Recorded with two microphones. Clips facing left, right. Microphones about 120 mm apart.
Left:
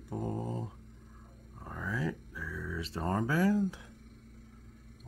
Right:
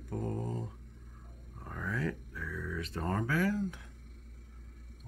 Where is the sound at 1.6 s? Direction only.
5° left (ahead or behind).